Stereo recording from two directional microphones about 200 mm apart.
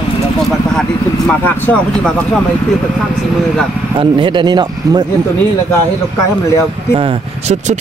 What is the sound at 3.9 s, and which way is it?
Speech, 25° right (ahead or behind).